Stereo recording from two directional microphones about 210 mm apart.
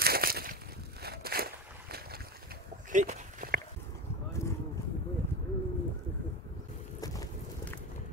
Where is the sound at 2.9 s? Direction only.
35° right (ahead or behind).